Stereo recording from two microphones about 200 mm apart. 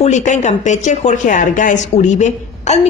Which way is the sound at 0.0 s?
35° left (ahead or behind).